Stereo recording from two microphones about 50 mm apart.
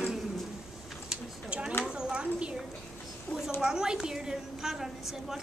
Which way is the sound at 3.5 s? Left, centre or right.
Centre.